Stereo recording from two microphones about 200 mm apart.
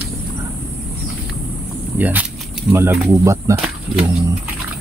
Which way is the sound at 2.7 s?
15° right (ahead or behind).